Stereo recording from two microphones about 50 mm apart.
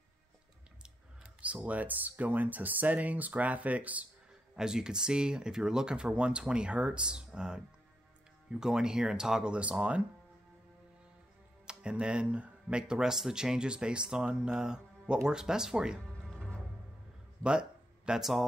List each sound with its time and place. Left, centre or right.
1.4 s speech: right
4.6 s speech: centre
11.6 s speech: centre
16.3 s music: centre
17.4 s a sound: centre